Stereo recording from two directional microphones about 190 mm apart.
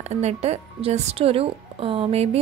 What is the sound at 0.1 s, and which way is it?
A woman's voice, 35° right (ahead or behind).